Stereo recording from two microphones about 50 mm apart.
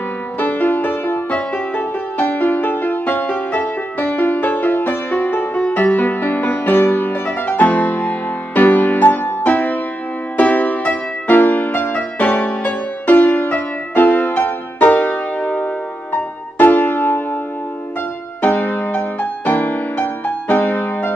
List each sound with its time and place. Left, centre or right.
0.4 s music: left
18.4 s music: left